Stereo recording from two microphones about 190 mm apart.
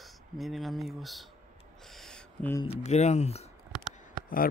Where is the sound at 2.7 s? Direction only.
35° left (ahead or behind).